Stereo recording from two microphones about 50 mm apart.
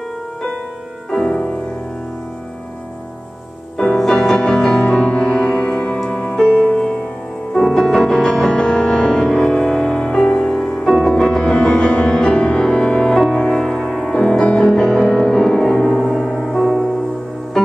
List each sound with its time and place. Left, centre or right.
1.1 s music: centre
3.7 s music: centre
7.5 s music: centre
14.9 s music: centre